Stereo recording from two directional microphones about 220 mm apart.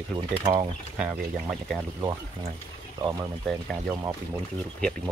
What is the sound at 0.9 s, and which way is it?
Speech, 5° right (ahead or behind).